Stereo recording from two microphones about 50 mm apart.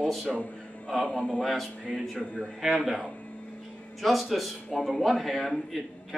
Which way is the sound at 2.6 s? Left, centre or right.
Centre.